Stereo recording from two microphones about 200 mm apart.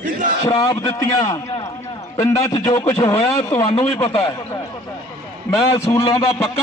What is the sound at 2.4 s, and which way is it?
A man's voice, 20° left (ahead or behind).